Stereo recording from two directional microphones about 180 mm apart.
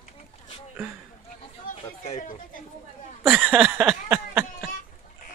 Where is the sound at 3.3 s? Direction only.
5° right (ahead or behind).